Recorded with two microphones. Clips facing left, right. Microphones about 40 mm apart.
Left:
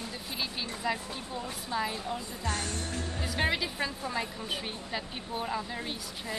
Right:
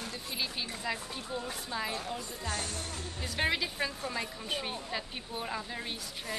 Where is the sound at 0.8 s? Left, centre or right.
Centre.